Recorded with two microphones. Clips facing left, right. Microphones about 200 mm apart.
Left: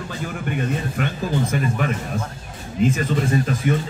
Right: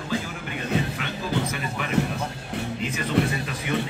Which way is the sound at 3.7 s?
45° left (ahead or behind).